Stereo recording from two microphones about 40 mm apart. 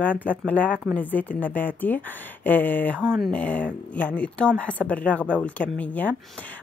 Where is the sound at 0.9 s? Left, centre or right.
Left.